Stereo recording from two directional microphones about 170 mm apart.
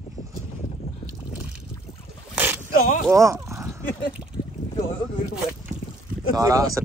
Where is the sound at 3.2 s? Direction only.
15° right (ahead or behind).